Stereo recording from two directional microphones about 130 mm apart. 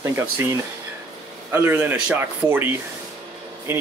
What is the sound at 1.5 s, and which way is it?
Speech, 15° right (ahead or behind).